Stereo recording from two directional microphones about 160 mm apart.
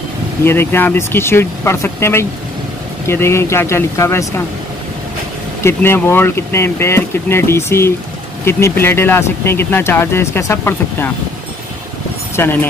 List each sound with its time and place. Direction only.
0.5 s speech: 15° left (ahead or behind)
5.6 s speech: 15° left (ahead or behind)
12.4 s speech: 15° left (ahead or behind)